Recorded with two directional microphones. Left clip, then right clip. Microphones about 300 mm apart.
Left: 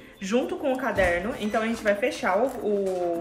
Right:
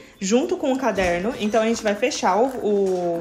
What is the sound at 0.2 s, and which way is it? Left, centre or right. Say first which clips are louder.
A woman's voice: right 5 dB; centre.